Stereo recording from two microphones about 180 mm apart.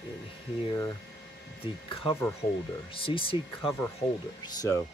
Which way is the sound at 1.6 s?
25° left (ahead or behind).